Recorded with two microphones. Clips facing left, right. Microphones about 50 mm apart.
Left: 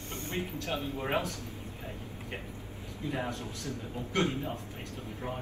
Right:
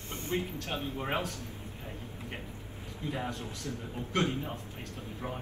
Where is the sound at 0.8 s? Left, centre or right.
Right.